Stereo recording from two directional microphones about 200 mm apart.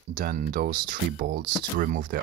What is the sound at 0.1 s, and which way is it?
Speech, 45° right (ahead or behind).